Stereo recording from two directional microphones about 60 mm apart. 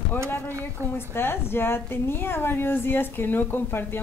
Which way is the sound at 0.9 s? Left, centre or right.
Left.